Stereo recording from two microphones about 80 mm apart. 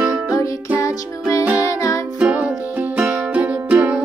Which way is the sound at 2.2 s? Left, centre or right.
Centre.